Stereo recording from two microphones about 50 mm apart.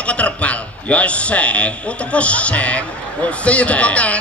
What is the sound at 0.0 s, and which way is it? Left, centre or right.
A man's voice, left.